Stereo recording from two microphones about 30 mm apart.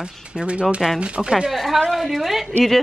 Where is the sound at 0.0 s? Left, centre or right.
Right.